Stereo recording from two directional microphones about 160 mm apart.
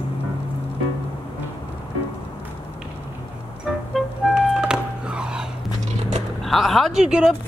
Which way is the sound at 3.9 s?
5° right (ahead or behind).